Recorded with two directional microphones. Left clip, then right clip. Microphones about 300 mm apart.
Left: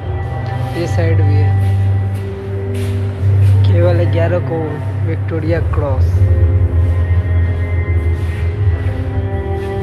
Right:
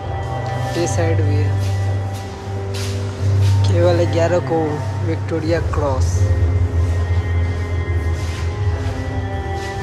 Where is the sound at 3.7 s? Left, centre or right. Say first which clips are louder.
Even; centre.